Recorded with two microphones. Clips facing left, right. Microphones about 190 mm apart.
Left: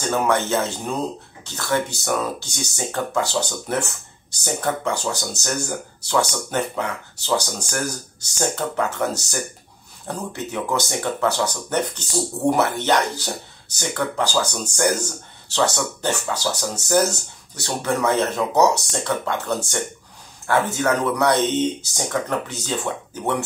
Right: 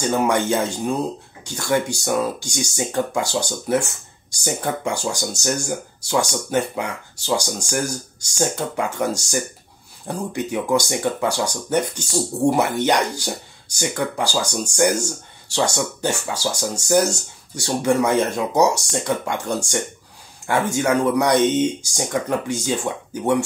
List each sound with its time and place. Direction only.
0.1 s speech: 15° right (ahead or behind)